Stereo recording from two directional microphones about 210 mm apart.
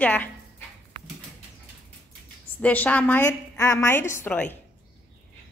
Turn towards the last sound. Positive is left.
turn(degrees=5)  # may be behind; listen again after turning